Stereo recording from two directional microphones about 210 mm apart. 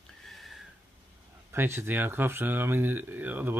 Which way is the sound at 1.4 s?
10° right (ahead or behind).